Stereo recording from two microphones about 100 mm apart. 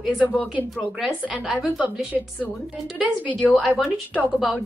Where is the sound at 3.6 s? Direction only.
Centre (ahead or behind).